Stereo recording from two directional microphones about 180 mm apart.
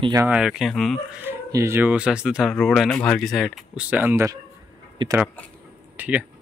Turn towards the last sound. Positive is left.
turn(degrees=-10)  # may be behind; listen again after turning